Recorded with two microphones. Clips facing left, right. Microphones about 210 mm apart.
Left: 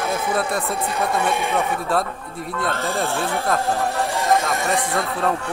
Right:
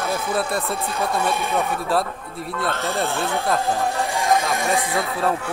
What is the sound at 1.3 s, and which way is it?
Speech, 15° left (ahead or behind).